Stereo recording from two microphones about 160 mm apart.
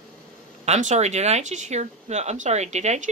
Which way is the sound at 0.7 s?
45° right (ahead or behind).